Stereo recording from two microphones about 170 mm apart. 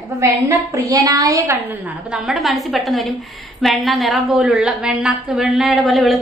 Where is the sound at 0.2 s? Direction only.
20° right (ahead or behind).